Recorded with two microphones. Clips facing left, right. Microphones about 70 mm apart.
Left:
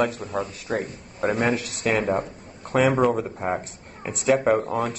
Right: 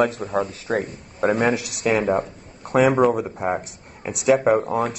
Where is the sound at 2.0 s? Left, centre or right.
Right.